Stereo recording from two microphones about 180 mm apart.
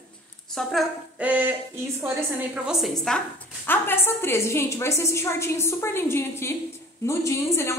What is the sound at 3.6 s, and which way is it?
A woman's voice, 10° left (ahead or behind).